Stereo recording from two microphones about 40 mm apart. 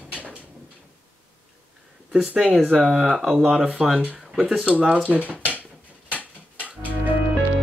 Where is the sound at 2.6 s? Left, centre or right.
Right; by 3.9 s centre.